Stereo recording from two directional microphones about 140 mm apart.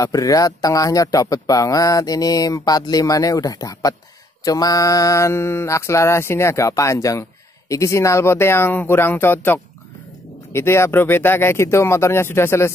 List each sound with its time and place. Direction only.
0.0 s speech: 25° left (ahead or behind)